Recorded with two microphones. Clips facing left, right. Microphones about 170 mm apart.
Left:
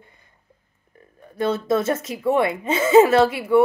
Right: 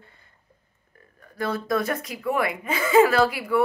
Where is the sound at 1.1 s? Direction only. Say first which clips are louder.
Left 5 dB; 25° left (ahead or behind).